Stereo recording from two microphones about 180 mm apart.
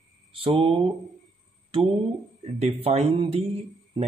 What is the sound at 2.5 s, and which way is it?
Speech, 35° right (ahead or behind).